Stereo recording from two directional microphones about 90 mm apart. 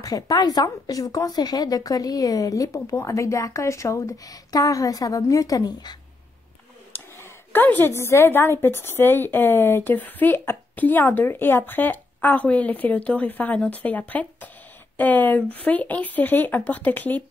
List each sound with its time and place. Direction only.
0.0 s a woman's voice: 45° left (ahead or behind)
6.9 s a woman's voice: 25° left (ahead or behind)